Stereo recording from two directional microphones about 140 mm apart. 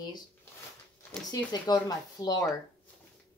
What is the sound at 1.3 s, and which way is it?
Speech, 30° left (ahead or behind).